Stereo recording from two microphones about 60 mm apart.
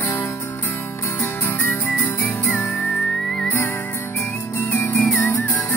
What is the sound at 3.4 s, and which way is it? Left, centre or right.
Music, left.